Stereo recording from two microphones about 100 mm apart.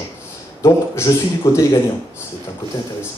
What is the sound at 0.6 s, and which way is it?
A man's voice, 30° left (ahead or behind).